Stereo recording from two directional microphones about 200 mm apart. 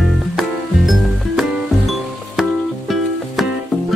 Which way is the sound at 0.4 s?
Centre (ahead or behind).